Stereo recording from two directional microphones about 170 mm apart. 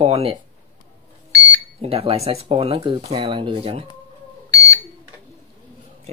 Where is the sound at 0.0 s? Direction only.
35° right (ahead or behind).